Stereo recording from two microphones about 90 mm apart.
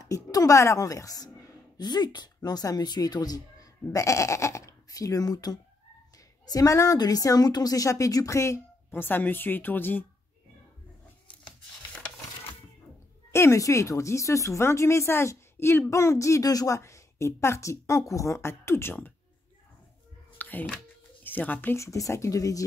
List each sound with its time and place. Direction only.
0.0 s a woman's voice: 40° left (ahead or behind)
3.9 s a woman's voice: 35° left (ahead or behind)
13.3 s a woman's voice: 30° left (ahead or behind)
20.3 s a sound: 20° left (ahead or behind)
21.2 s a woman's voice: 20° left (ahead or behind); by 22.7 s 40° left (ahead or behind)